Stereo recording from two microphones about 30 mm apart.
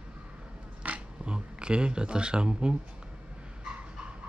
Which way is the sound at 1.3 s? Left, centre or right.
Right.